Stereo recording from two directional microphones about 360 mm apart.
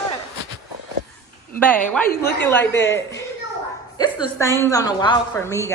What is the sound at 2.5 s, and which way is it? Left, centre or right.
Speech, centre.